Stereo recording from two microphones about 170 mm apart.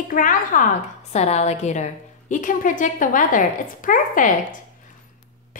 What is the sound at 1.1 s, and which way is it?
A woman's voice, 40° left (ahead or behind).